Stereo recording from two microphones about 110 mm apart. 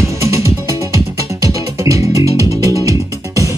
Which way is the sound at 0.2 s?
25° right (ahead or behind).